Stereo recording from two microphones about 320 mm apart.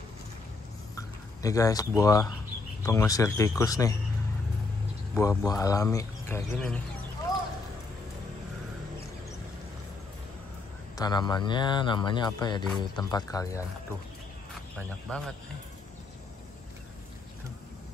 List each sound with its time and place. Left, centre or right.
0.9 s speech: centre
5.1 s speech: centre
7.3 s a sound: centre
11.0 s speech: centre
14.8 s speech: centre